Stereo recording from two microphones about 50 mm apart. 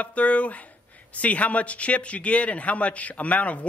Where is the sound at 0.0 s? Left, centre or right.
Left.